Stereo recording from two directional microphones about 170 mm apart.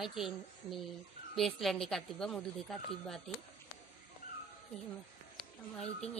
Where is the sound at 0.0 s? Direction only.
Centre (ahead or behind).